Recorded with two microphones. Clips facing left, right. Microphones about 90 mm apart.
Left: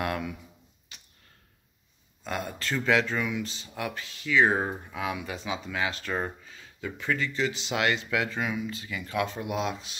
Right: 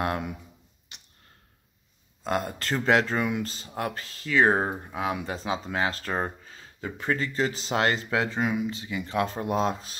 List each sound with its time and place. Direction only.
0.0 s speech: 30° right (ahead or behind)
2.2 s speech: 35° right (ahead or behind)